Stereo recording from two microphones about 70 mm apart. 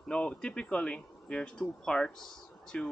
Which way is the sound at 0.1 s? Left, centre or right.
Centre.